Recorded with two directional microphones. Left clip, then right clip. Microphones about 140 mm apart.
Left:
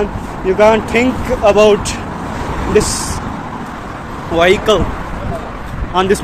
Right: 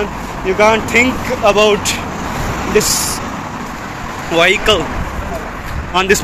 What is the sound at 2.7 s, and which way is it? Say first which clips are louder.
Speech: left 1 dB; 50° left (ahead or behind).